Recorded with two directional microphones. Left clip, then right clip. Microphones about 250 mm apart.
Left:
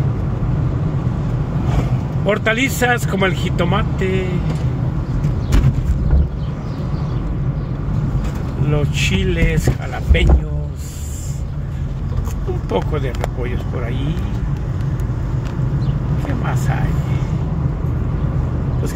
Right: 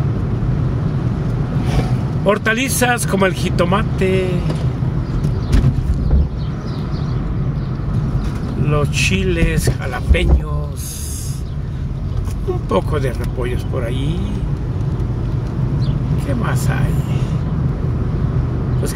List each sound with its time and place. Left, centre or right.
2.2 s speech: right
8.6 s speech: right
12.7 s speech: right